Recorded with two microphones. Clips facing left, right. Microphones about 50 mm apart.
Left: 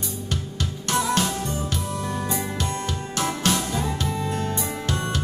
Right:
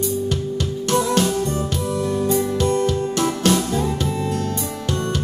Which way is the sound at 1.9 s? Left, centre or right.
Centre.